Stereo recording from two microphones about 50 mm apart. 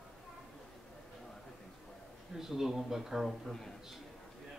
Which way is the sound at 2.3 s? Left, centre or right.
Centre.